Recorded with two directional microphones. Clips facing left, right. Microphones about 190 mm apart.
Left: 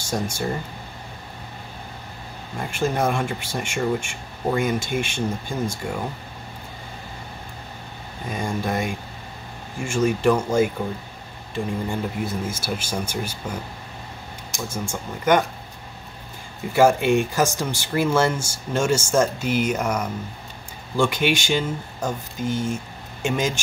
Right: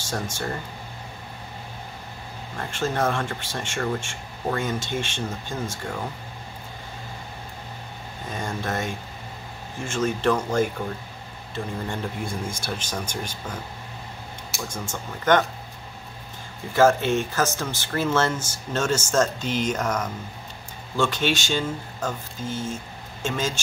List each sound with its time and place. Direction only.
0.1 s speech: 10° left (ahead or behind)
2.5 s speech: 10° left (ahead or behind)
8.3 s speech: 10° left (ahead or behind)
14.7 s speech: 10° left (ahead or behind)
16.7 s speech: 10° left (ahead or behind)